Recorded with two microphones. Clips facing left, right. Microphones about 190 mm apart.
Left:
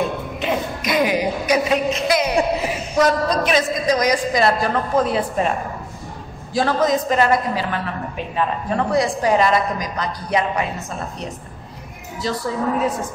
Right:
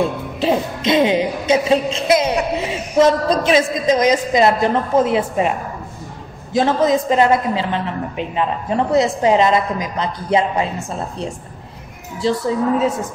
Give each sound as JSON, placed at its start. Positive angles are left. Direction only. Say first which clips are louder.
{"t": 0.0, "sound": "a woman's voice", "louder": "right 4 dB", "side_deg": -30}
{"t": 6.5, "sound": "a woman's voice", "louder": "right 3 dB", "side_deg": -25}